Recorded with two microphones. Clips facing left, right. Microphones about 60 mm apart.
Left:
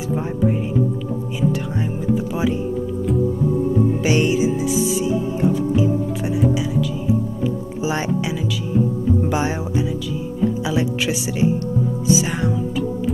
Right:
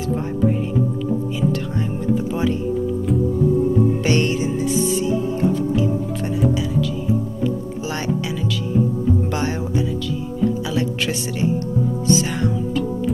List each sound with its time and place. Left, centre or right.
0.1 s speech: centre
3.9 s music: centre
9.3 s speech: centre